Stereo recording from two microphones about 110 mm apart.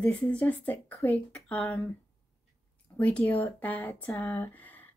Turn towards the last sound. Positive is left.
turn(degrees=15)  # may be behind; listen again after turning